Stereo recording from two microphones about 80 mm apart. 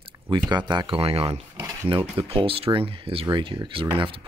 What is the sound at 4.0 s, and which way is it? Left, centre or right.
Speech, right.